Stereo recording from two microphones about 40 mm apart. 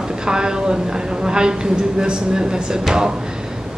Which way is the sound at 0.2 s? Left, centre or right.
Centre.